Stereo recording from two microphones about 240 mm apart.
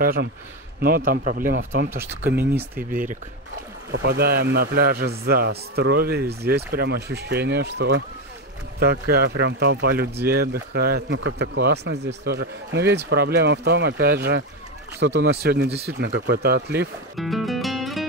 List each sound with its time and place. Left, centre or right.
0.0 s a man's voice: right
2.2 s speech: centre
2.7 s a man's voice: right
17.2 s music: centre